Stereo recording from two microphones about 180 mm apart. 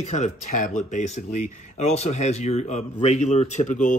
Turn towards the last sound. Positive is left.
turn(degrees=40)  # may be behind; listen again after turning